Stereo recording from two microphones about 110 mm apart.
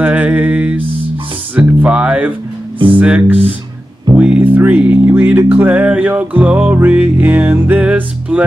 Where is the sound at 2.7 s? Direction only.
50° right (ahead or behind).